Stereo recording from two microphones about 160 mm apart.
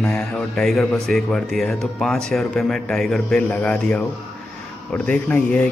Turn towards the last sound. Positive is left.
turn(degrees=10)  # may be behind; listen again after turning